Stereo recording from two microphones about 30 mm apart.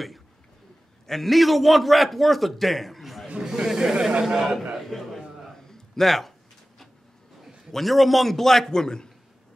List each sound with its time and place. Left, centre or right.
1.0 s a man's voice: centre
3.4 s speech: centre
3.9 s a man's voice: right
4.2 s a man's voice: centre
4.7 s a sound: centre
7.7 s a man's voice: centre
8.7 s a man's voice: left